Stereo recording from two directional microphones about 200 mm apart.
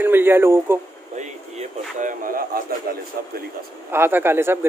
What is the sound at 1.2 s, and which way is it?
Speech, 35° right (ahead or behind).